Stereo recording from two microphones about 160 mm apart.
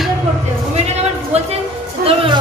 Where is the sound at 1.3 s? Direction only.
40° right (ahead or behind).